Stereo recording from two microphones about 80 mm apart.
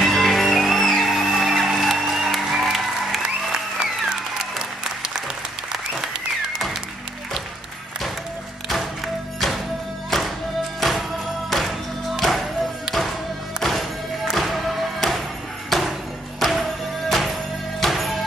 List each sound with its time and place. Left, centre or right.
0.0 s music: centre
8.6 s music: centre
10.8 s music: centre
13.6 s music: centre
15.7 s a sound: centre
16.3 s music: centre